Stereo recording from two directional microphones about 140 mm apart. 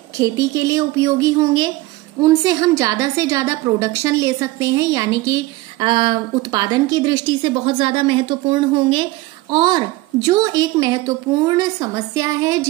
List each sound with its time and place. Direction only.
0.2 s a woman's voice: 25° right (ahead or behind)
5.8 s a woman's voice: 35° right (ahead or behind)